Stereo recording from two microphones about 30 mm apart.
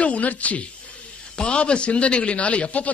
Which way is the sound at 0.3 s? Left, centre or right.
Left.